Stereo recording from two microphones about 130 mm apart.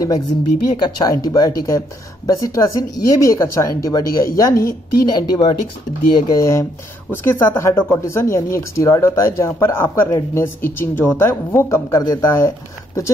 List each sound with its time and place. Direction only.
0.7 s speech: 35° left (ahead or behind)